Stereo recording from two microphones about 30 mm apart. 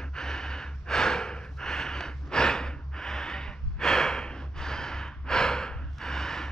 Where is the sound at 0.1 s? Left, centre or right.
Left.